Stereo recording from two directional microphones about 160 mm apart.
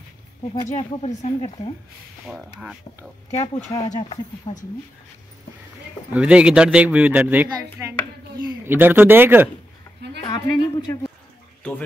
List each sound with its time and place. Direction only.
0.7 s speech: 45° left (ahead or behind)
3.3 s speech: 15° left (ahead or behind)
4.1 s speech: 45° left (ahead or behind)
6.1 s a man's voice: 5° right (ahead or behind)
8.4 s a sound: 25° right (ahead or behind)
8.7 s a man's voice: 10° right (ahead or behind)
10.2 s a woman's voice: 25° left (ahead or behind)